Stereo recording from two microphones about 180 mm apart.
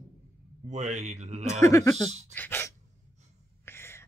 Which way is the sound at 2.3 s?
10° left (ahead or behind).